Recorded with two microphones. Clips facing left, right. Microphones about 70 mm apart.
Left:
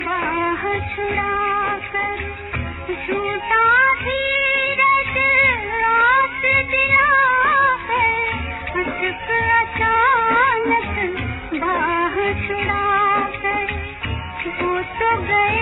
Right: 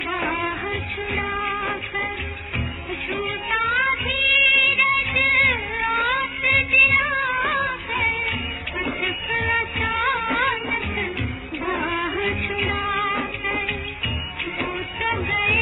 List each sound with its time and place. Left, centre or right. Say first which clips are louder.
0.2 s a sound: left 5 dB; centre
0.7 s music: left 6 dB; left
1.2 s music of bollywood: left 7 dB; centre
3.3 s music: left 9 dB; left
5.7 s music: left 7 dB; left
14.7 s music: left 10 dB; left